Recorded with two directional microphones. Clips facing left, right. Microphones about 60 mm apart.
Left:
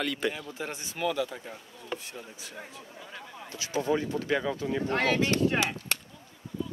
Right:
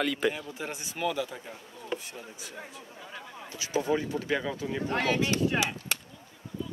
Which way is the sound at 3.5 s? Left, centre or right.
Right.